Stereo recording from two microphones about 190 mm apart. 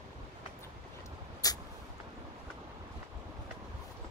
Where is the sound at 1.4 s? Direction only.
20° left (ahead or behind).